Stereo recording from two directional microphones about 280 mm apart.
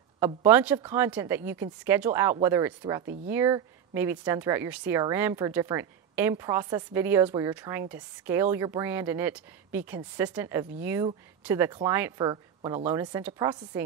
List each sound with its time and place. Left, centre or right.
0.5 s speech: centre